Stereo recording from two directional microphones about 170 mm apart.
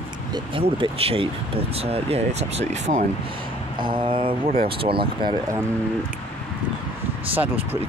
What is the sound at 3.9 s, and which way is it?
Speech, 30° right (ahead or behind).